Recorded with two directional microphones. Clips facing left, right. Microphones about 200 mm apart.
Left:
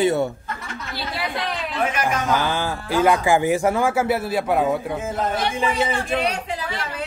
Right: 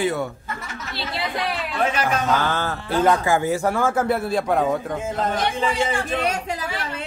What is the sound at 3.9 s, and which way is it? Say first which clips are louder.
Speech: even; 5° left (ahead or behind).